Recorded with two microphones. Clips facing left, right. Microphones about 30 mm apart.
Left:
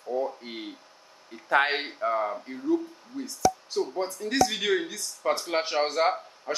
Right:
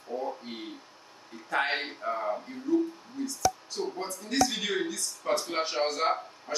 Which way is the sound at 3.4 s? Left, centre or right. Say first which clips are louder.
Left 4 dB; centre.